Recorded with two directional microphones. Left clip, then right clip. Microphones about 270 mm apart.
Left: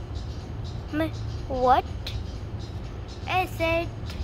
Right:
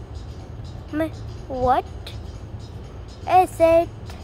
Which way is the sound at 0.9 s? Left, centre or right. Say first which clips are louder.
Right 3 dB; centre.